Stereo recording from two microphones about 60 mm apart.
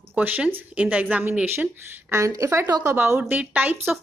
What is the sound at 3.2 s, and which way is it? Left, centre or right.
Speech, right.